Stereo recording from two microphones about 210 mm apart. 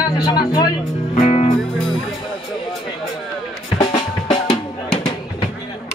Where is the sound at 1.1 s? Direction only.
30° left (ahead or behind).